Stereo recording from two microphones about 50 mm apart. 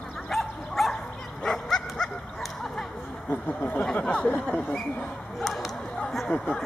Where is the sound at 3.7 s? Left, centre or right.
Centre.